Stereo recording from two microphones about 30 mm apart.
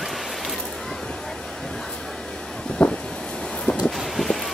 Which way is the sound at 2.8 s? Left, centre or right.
Left.